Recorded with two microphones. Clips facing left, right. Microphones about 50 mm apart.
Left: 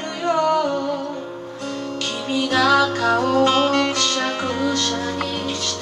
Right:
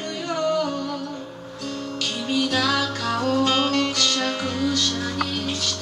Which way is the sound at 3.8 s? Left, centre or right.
Left.